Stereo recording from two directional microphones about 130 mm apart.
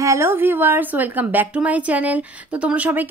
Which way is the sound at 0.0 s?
20° right (ahead or behind).